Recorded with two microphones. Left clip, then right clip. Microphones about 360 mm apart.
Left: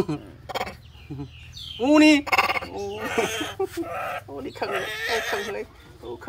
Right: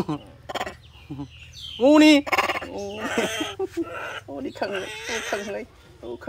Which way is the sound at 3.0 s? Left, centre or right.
Centre.